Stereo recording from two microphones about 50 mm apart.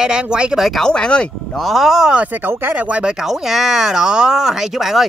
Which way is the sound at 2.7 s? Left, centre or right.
Right.